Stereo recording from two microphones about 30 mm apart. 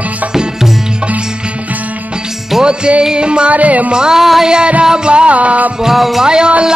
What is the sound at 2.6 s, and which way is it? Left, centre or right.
Music, right.